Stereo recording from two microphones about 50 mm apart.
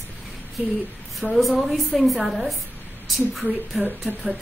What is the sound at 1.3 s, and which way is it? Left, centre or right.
A woman's voice, centre.